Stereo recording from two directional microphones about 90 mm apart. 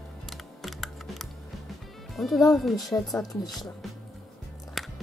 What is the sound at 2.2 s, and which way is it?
Speech, centre (ahead or behind).